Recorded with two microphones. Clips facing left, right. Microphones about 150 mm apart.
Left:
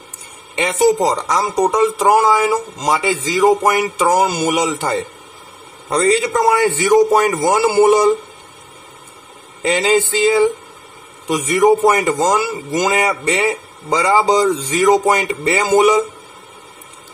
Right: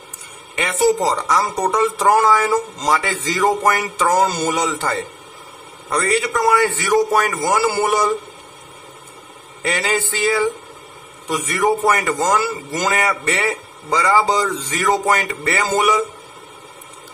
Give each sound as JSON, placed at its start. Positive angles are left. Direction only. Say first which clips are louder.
{"t": 0.6, "sound": "a man's voice", "louder": "left 3 dB", "side_deg": 20}
{"t": 9.6, "sound": "a man's voice", "louder": "left 6 dB", "side_deg": 20}